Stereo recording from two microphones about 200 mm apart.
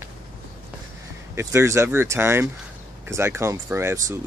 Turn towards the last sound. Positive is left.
turn(degrees=-10)  # may be behind; listen again after turning